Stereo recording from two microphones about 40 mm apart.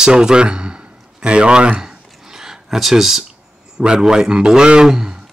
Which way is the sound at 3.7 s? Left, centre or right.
Centre.